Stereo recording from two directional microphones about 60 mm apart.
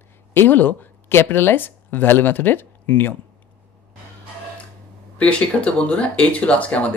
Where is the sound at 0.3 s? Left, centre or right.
Left.